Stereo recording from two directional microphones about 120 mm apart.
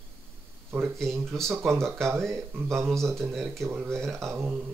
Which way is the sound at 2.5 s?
20° right (ahead or behind).